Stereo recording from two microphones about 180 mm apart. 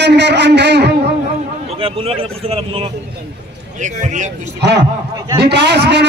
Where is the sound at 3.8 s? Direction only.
45° right (ahead or behind).